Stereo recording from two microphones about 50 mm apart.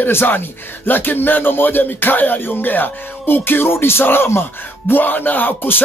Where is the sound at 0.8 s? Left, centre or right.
Left.